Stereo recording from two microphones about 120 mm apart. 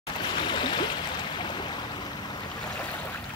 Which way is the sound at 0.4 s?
40° left (ahead or behind).